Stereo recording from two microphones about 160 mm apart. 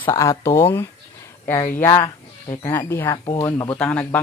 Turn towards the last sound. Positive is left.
turn(degrees=10)  # may be behind; listen again after turning